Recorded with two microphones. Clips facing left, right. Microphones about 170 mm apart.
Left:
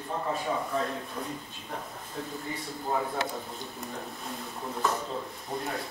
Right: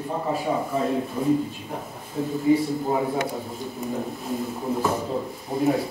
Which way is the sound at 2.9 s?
15° right (ahead or behind).